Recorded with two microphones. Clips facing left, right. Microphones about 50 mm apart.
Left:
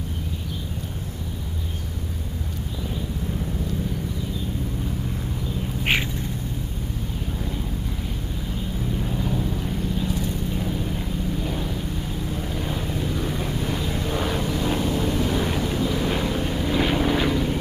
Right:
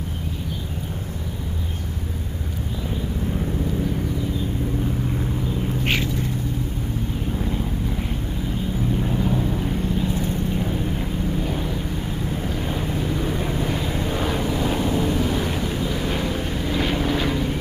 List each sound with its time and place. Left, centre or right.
8.9 s vehicle: centre
10.0 s vehicle: right
10.5 s vehicle: centre